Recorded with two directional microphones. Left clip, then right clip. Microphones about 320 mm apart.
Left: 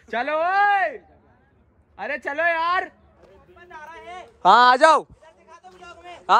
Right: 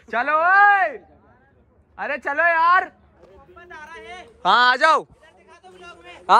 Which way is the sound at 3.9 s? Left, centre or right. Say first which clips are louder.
Even; centre.